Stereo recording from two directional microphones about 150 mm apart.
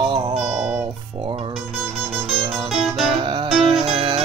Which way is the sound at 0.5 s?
5° right (ahead or behind).